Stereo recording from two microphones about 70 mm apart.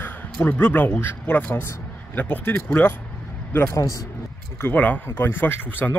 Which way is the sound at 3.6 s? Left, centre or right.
Left.